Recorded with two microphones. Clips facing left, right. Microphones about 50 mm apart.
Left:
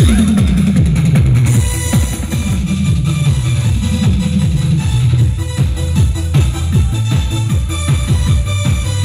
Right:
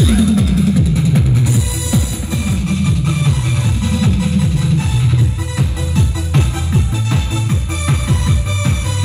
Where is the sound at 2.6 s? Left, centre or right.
Right.